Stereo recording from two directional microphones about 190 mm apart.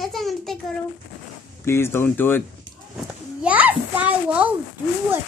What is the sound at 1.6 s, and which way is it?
Speech, 15° left (ahead or behind).